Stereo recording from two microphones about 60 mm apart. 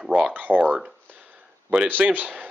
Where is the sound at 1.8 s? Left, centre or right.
Right.